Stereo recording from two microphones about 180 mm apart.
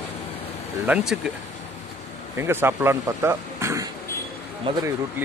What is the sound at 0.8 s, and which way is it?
Speech, 5° right (ahead or behind).